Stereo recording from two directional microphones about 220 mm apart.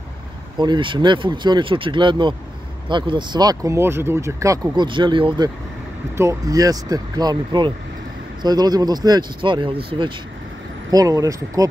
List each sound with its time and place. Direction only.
0.6 s speech: 20° right (ahead or behind)